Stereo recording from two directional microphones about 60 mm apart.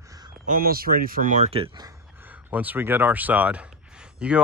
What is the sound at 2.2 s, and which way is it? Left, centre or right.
Speech, right.